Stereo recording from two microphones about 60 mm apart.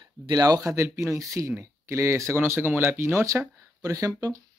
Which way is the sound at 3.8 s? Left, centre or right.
Right.